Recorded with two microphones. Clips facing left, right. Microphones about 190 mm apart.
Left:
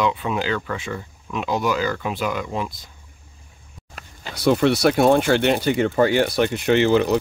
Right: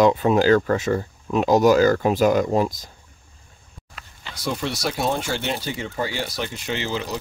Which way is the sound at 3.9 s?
45° left (ahead or behind).